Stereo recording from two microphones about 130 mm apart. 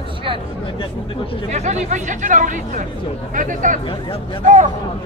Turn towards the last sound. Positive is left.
turn(degrees=-80)